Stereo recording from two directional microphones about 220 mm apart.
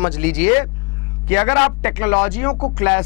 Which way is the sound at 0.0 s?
10° left (ahead or behind).